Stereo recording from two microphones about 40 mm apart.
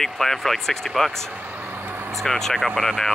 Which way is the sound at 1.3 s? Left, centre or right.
Right.